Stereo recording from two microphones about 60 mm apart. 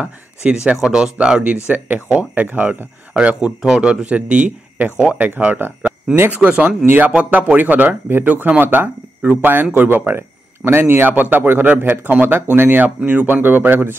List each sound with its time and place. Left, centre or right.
0.0 s speech: right
1.7 s speech: right
7.2 s speech: right